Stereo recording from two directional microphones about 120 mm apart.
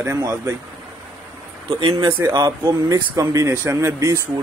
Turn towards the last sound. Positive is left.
turn(degrees=-25)  # may be behind; listen again after turning